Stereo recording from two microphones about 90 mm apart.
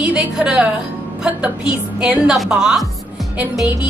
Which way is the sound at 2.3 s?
5° right (ahead or behind).